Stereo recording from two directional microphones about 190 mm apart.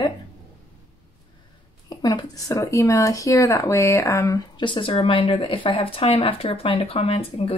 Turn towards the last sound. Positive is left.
turn(degrees=30)  # may be behind; listen again after turning